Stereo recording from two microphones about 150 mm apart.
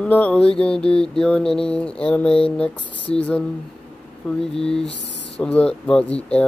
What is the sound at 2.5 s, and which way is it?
Speech, 5° left (ahead or behind).